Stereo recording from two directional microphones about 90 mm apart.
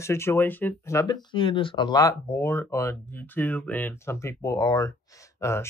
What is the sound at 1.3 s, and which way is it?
Speech, 70° left (ahead or behind).